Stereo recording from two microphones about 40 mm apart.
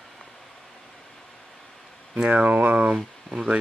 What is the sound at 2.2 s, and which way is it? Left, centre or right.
Speech, right.